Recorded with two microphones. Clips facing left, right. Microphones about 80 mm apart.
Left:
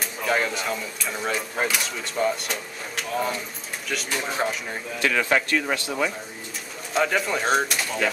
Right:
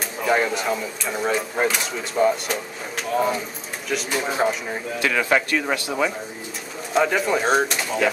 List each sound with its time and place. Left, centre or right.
0.2 s speech: centre
5.1 s speech: right
6.9 s speech: centre